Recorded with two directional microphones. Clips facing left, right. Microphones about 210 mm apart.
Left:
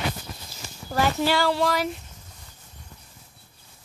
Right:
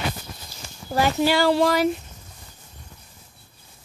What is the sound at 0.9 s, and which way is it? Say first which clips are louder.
Speech: right 3 dB; 15° right (ahead or behind).